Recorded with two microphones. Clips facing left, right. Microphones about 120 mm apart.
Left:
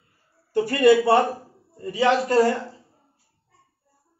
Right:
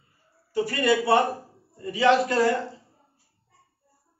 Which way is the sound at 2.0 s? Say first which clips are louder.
Left 2 dB; 40° left (ahead or behind).